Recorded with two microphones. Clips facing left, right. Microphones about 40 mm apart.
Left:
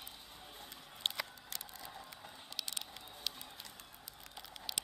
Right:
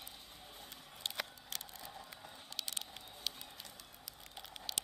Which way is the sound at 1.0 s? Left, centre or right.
Left.